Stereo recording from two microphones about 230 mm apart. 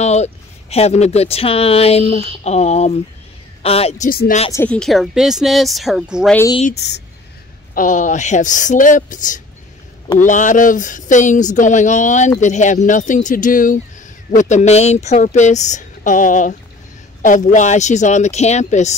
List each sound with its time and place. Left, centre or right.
0.0 s speech: left
4.1 s speech: left
4.5 s speech: centre
6.7 s speech: left
7.7 s speech: left